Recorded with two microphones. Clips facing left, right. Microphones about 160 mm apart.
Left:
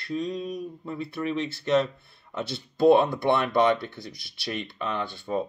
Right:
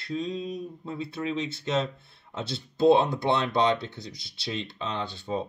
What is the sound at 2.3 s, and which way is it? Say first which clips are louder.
Speech: left 2 dB; 25° right (ahead or behind).